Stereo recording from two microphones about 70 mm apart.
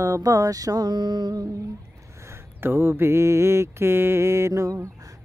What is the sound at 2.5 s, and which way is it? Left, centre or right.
Mantra, right.